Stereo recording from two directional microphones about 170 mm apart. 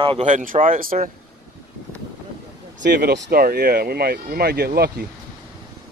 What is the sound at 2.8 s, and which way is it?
Speech, 85° right.